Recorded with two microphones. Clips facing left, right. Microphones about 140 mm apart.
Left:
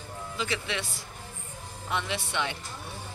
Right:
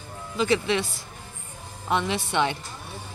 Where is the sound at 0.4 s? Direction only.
30° right (ahead or behind).